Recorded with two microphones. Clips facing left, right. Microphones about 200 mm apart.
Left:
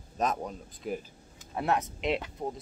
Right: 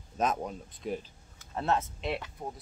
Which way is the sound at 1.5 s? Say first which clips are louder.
Left 1 dB; 15° left (ahead or behind).